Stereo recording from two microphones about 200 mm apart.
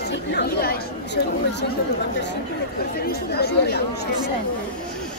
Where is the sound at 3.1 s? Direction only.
55° left (ahead or behind).